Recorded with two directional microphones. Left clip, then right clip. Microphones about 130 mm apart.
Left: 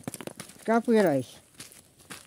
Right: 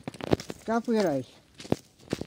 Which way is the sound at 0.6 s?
60° left (ahead or behind).